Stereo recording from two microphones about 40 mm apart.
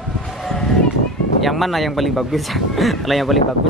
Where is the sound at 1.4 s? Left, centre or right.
Centre.